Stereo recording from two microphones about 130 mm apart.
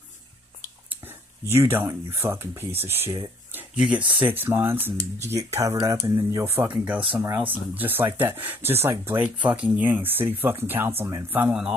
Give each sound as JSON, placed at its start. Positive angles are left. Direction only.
{"t": 1.0, "sound": "speech", "side_deg": -20}